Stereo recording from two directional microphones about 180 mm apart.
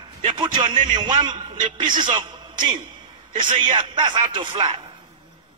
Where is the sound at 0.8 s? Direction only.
45° right (ahead or behind).